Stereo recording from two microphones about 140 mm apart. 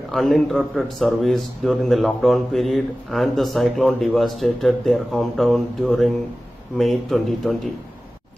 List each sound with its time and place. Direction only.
0.1 s a man's voice: centre (ahead or behind)